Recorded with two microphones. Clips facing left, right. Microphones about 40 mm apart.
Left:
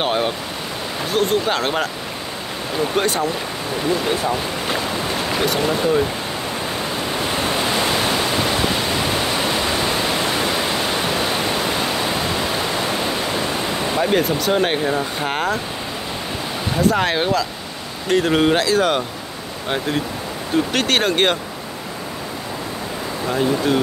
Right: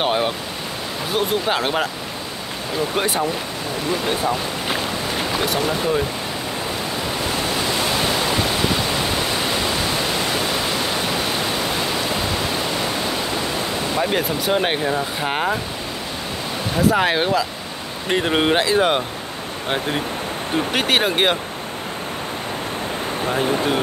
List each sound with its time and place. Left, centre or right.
0.0 s speech: centre
3.0 s speech: centre
5.4 s speech: centre
13.9 s speech: centre
14.4 s speech: centre
16.7 s speech: centre
18.0 s speech: right
20.7 s speech: centre